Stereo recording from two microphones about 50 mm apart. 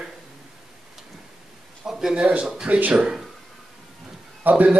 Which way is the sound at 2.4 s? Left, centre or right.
Centre.